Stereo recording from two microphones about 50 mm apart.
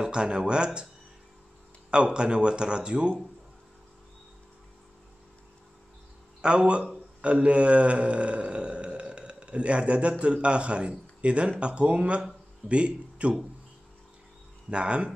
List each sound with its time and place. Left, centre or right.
0.0 s speech: centre
1.9 s a man's voice: centre
6.4 s a man's voice: right
14.7 s a man's voice: right